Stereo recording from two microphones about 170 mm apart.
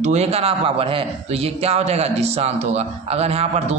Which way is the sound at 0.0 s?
40° right (ahead or behind).